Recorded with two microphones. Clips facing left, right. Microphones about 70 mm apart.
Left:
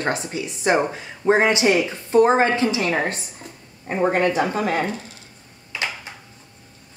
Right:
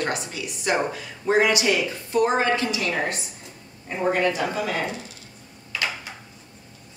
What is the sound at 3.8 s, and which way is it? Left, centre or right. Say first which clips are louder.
Speech: left 3 dB; left.